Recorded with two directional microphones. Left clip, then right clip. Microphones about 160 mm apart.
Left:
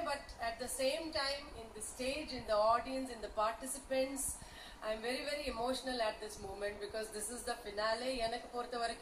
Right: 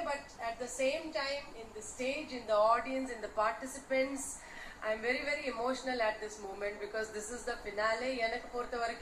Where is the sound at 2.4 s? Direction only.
30° left (ahead or behind).